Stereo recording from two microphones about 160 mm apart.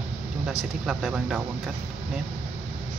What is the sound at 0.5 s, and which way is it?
Speech, centre (ahead or behind).